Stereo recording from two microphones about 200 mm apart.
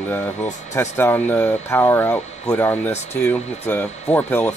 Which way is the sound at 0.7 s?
15° left (ahead or behind).